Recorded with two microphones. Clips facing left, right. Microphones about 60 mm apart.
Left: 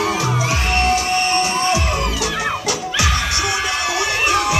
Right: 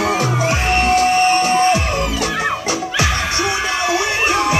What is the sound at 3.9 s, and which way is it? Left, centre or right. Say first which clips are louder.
Music: even; right.